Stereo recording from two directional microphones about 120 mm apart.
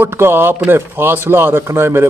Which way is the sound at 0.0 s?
20° right (ahead or behind).